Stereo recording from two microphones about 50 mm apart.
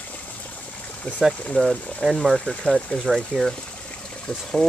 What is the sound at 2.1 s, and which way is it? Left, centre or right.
Speech, centre.